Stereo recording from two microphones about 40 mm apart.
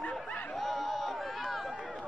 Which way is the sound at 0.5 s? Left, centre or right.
Centre.